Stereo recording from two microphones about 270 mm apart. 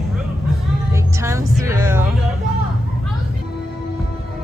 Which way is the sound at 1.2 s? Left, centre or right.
Centre.